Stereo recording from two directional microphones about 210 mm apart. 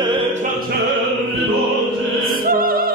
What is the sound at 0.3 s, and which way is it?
Music, 35° right (ahead or behind).